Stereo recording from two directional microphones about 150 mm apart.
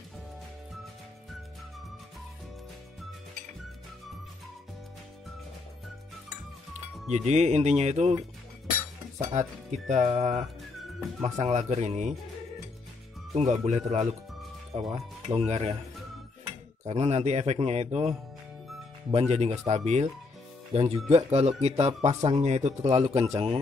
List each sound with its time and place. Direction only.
7.1 s speech: 50° right (ahead or behind)
9.2 s speech: 50° right (ahead or behind)
13.3 s speech: 45° right (ahead or behind)
14.7 s speech: 40° right (ahead or behind)
16.8 s speech: 45° right (ahead or behind)
22.8 s a man's voice: 25° right (ahead or behind)
23.0 s speech: 45° right (ahead or behind)